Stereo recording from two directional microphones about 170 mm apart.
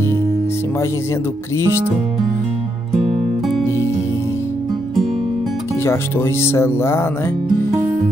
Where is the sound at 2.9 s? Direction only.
Centre (ahead or behind).